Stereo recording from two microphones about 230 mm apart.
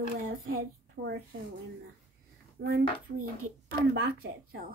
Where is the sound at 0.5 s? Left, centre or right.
Right.